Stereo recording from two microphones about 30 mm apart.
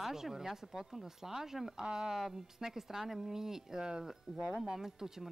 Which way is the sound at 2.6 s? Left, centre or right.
Centre.